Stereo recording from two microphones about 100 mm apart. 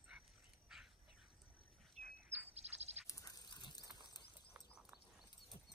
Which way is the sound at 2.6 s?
90° right.